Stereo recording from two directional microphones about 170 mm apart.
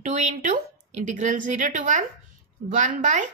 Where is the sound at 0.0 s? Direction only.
45° right (ahead or behind).